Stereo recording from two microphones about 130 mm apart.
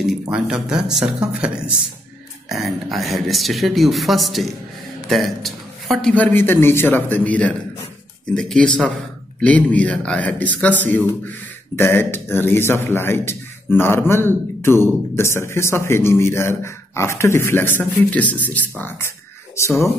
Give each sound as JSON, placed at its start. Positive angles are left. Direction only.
{"t": 0.3, "sound": "speech", "side_deg": -5}
{"t": 2.5, "sound": "a man's voice", "side_deg": 0}
{"t": 6.1, "sound": "a man's voice", "side_deg": 15}